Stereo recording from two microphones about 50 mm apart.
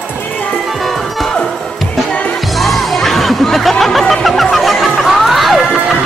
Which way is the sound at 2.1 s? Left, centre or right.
Left.